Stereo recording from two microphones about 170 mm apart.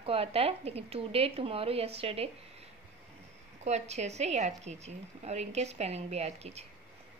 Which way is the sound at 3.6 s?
40° right (ahead or behind).